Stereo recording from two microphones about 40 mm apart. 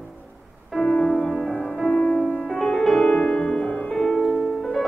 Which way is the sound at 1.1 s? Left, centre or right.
Centre.